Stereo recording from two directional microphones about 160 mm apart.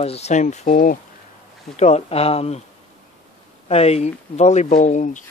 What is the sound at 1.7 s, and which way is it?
Speech, 45° left (ahead or behind).